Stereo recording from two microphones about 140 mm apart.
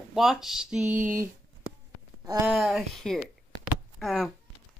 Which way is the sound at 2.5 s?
Centre (ahead or behind).